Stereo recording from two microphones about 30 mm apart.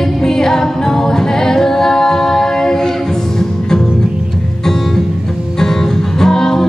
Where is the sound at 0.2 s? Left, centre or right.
Centre.